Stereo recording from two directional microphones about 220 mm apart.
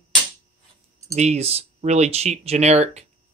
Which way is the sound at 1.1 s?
30° right (ahead or behind).